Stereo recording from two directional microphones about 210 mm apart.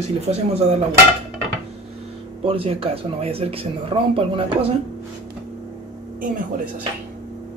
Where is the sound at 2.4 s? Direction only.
25° right (ahead or behind).